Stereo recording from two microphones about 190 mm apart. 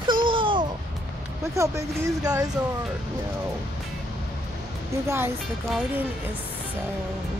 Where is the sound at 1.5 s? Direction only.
15° right (ahead or behind).